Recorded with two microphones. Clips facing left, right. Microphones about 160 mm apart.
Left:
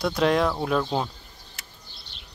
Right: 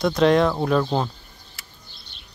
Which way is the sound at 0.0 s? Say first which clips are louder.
Right 4 dB; 5° left (ahead or behind).